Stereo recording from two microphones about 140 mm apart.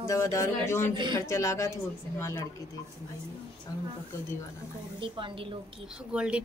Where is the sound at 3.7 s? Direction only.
25° left (ahead or behind).